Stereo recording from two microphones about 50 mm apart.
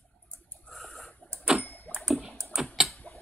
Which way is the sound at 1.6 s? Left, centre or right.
Left.